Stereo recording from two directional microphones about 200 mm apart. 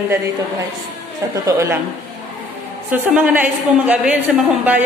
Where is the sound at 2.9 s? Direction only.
10° right (ahead or behind).